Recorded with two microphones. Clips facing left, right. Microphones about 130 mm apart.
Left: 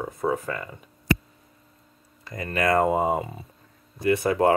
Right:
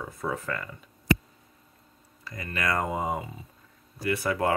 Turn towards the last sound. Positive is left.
turn(degrees=25)  # may be behind; listen again after turning